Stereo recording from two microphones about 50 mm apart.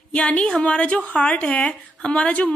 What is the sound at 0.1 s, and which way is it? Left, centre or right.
Speech, left.